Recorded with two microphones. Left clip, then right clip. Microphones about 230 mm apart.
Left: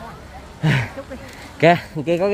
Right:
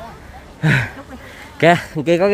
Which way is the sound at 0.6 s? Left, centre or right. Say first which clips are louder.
Right 4 dB; right.